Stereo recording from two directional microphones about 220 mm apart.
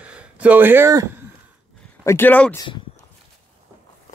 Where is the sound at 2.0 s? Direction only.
10° left (ahead or behind).